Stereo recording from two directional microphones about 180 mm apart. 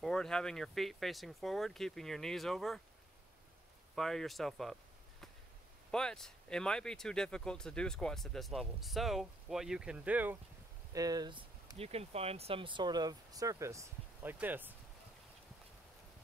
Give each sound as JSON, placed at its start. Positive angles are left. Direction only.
{"t": 0.0, "sound": "speech", "side_deg": 5}
{"t": 3.9, "sound": "speech", "side_deg": 0}
{"t": 5.9, "sound": "speech", "side_deg": 5}
{"t": 10.9, "sound": "speech", "side_deg": -20}